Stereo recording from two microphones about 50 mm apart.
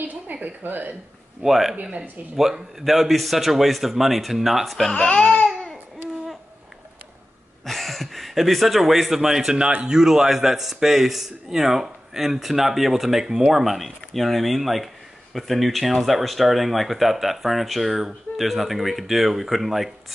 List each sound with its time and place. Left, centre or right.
0.0 s speech: right
1.4 s a man's voice: centre
1.8 s speech: right
2.3 s a man's voice: centre
4.9 s speech: centre
5.5 s a sound: centre
7.6 s a man's voice: centre